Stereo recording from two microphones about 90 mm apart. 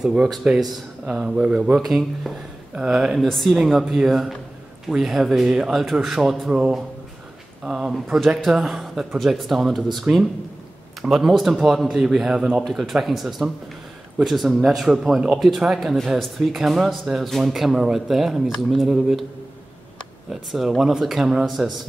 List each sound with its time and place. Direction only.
0.0 s speech: 10° right (ahead or behind)
1.8 s speech: centre (ahead or behind)
6.5 s speech: 10° right (ahead or behind)
20.5 s speech: 5° right (ahead or behind)